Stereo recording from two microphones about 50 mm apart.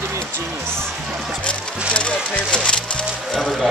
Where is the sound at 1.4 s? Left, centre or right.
Left.